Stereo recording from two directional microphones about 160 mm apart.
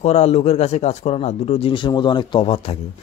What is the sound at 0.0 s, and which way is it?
Speech, 40° left (ahead or behind).